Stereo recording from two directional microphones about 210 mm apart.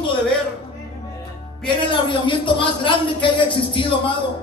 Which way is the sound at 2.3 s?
25° left (ahead or behind).